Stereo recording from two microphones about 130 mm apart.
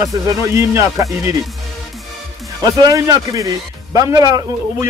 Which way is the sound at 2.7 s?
25° right (ahead or behind).